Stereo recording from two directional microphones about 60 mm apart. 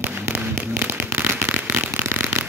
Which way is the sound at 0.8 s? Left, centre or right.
Right.